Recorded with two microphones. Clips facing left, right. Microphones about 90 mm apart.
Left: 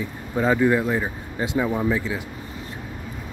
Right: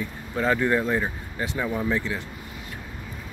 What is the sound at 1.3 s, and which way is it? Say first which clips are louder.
Speech: left 5 dB; 15° left (ahead or behind).